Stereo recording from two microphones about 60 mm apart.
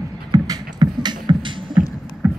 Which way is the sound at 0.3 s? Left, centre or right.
Right.